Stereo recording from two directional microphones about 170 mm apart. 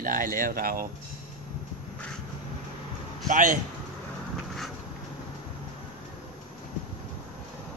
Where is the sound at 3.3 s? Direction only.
50° right (ahead or behind).